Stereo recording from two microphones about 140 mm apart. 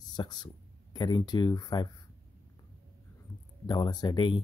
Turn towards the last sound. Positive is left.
turn(degrees=35)  # may be behind; listen again after turning